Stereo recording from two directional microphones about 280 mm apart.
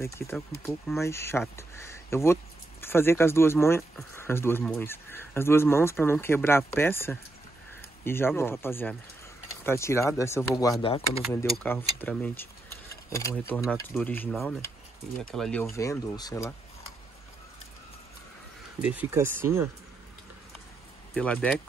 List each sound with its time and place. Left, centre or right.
0.2 s speech: centre
11.4 s speech: centre
18.8 s speech: centre
21.1 s speech: centre